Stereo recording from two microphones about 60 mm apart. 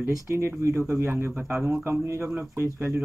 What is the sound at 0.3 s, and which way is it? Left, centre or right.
Speech, right.